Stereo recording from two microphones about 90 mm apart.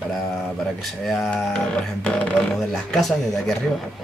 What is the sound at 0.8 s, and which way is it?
Speech, 5° left (ahead or behind).